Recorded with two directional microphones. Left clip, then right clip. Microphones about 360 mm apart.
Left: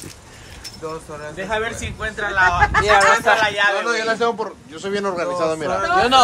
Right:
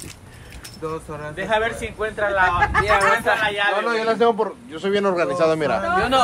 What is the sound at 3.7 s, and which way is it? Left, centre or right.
A man's voice, right.